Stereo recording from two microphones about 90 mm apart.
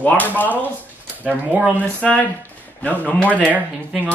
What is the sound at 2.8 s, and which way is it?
Speech, 15° left (ahead or behind).